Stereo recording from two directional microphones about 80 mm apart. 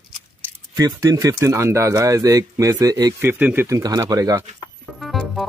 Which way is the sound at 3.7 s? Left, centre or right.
Right.